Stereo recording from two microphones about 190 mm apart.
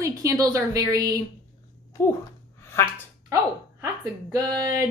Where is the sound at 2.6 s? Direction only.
15° left (ahead or behind).